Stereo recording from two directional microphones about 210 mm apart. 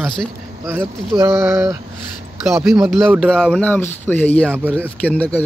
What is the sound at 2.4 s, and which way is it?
A man's voice, centre (ahead or behind).